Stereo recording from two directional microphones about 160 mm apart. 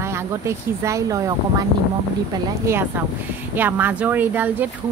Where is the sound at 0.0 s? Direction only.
15° right (ahead or behind).